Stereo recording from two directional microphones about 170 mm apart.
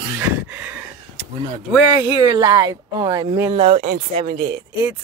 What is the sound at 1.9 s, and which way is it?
Speech, 20° right (ahead or behind).